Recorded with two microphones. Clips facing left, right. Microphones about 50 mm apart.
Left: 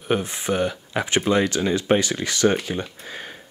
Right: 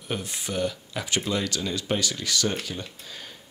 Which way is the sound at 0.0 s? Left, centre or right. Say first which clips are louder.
Left 9 dB; left.